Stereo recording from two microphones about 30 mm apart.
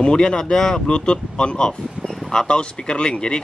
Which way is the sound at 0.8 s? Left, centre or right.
Left.